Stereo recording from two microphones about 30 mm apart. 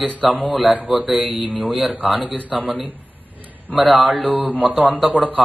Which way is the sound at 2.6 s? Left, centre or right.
Right.